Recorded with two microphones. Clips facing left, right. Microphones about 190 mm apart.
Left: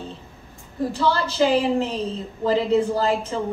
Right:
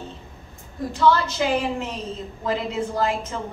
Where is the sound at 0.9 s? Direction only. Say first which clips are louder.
Right 3 dB; 35° left (ahead or behind).